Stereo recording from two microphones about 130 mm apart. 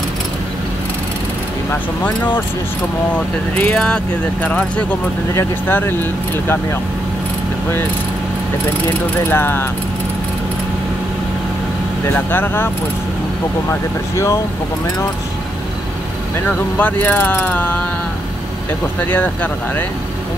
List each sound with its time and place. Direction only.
1.7 s mechanisms: 15° left (ahead or behind)
3.5 s mechanisms: 10° left (ahead or behind)
5.3 s mechanisms: 20° left (ahead or behind)
9.3 s mechanisms: 15° left (ahead or behind)
12.3 s mechanisms: 15° left (ahead or behind)
13.7 s speech: 20° left (ahead or behind)
16.4 s mechanisms: 15° left (ahead or behind)
18.9 s mechanisms: 15° left (ahead or behind)